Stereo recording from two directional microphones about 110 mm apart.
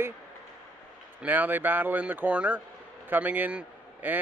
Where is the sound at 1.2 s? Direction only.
15° right (ahead or behind).